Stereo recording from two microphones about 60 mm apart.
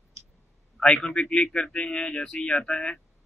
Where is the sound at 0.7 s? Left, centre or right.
Left.